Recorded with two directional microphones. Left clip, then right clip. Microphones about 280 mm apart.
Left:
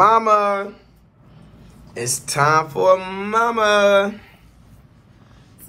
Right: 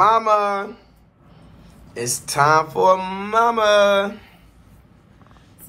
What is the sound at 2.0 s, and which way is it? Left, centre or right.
Speech, centre.